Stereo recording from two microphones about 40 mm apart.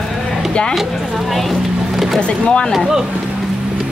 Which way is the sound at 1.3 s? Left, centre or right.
Centre.